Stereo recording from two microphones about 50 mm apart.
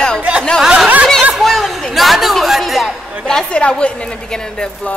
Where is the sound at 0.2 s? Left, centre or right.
Right.